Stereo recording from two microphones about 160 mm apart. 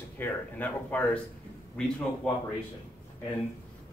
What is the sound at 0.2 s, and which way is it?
A man's voice, 10° left (ahead or behind).